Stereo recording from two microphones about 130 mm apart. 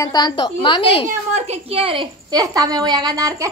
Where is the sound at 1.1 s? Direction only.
60° right (ahead or behind).